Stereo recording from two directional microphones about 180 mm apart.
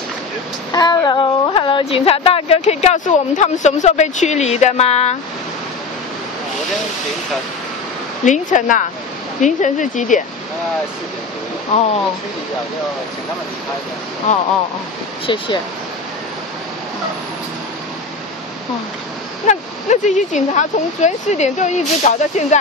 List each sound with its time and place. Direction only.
0.7 s speech: 25° left (ahead or behind)
8.3 s speech: 45° left (ahead or behind)
14.3 s speech: 40° left (ahead or behind)
15.2 s speech: 30° left (ahead or behind)
19.4 s speech: 40° left (ahead or behind)